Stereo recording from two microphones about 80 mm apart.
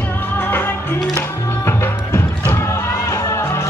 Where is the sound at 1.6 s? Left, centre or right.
Left.